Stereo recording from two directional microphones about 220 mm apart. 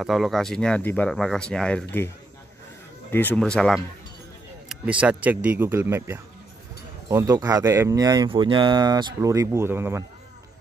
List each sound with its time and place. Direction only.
0.0 s speech: centre (ahead or behind)
3.1 s speech: 10° left (ahead or behind); by 10.0 s 10° right (ahead or behind)